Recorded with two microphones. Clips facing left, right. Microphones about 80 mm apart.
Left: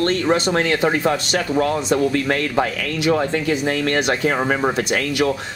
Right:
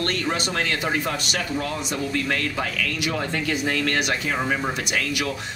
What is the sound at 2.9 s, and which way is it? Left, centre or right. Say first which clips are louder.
A man's voice: left 8 dB; left.